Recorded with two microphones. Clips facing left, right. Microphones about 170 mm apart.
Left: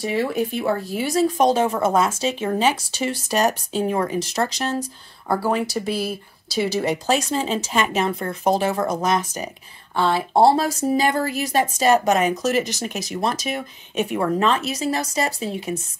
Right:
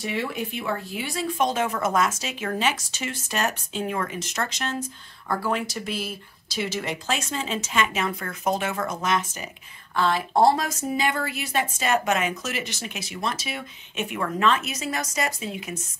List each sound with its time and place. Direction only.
0.0 s speech: 35° left (ahead or behind)